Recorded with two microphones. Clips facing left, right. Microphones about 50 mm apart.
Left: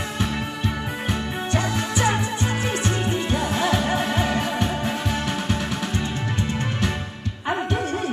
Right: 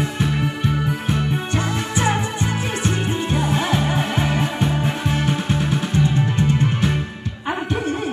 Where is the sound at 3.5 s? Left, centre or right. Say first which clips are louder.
Left 1 dB; right.